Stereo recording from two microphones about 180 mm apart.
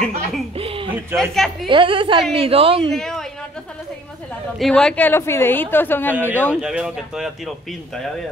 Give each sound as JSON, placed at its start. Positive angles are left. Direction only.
{"t": 0.6, "sound": "a sound", "side_deg": -30}
{"t": 1.1, "sound": "speech", "side_deg": 0}
{"t": 1.7, "sound": "a woman's voice", "side_deg": -30}
{"t": 2.9, "sound": "a man's voice", "side_deg": 0}
{"t": 4.6, "sound": "speech", "side_deg": 5}
{"t": 6.6, "sound": "speech", "side_deg": -5}